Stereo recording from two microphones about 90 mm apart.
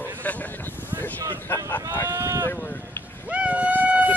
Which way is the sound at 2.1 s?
30° right (ahead or behind).